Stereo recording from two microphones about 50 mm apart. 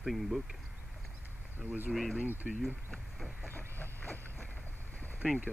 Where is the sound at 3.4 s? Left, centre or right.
Left.